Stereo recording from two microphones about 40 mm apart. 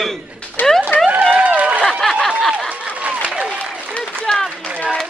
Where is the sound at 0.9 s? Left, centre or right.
Left.